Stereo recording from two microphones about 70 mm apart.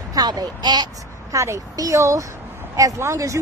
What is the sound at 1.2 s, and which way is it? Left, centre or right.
Speech, right.